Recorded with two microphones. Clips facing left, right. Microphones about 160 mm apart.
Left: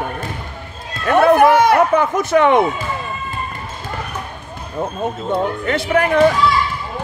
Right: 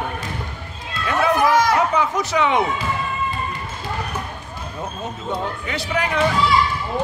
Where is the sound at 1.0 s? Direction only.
55° left (ahead or behind).